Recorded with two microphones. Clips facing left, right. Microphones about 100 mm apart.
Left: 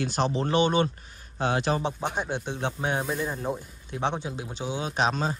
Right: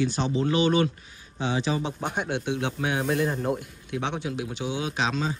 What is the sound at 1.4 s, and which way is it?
Speech, 55° left (ahead or behind).